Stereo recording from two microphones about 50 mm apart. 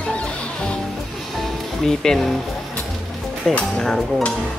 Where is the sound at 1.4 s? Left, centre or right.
Centre.